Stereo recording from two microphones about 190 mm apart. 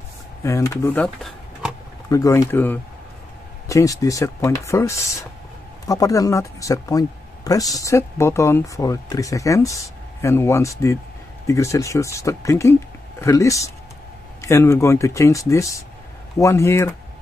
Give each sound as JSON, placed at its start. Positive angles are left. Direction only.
{"t": 0.4, "sound": "speech", "side_deg": 15}
{"t": 2.0, "sound": "speech", "side_deg": 15}